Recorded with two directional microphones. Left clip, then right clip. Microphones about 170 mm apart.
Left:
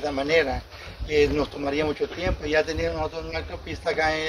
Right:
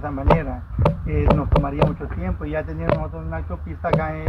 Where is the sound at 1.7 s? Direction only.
15° left (ahead or behind).